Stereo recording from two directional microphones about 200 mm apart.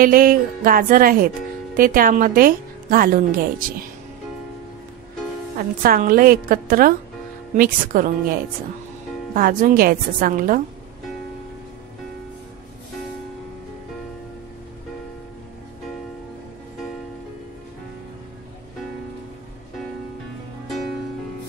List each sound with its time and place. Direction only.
0.0 s a woman's voice: 45° right (ahead or behind)
5.6 s a woman's voice: 45° right (ahead or behind)
9.3 s a woman's voice: 40° right (ahead or behind)